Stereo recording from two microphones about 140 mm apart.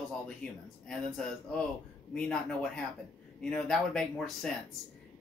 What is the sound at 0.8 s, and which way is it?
Speech, 5° left (ahead or behind).